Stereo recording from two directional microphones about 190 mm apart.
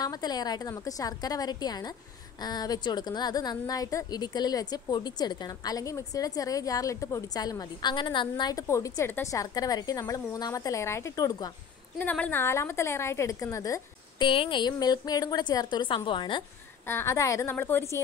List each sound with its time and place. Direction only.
0.0 s a woman's voice: 20° left (ahead or behind)
12.0 s a woman's voice: 10° left (ahead or behind); by 16.4 s 25° left (ahead or behind)
16.8 s a woman's voice: 15° left (ahead or behind)